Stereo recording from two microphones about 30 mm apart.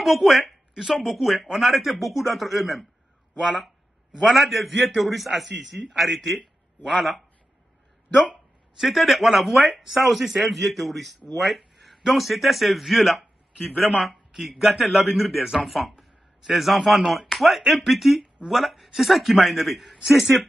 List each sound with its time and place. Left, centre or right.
0.0 s a man's voice: centre
4.3 s a man's voice: centre
8.8 s a man's voice: centre
14.0 s a sound: centre
14.5 s a man's voice: centre